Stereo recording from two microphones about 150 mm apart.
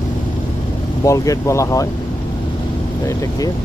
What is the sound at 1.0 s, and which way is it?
Speech, 20° left (ahead or behind).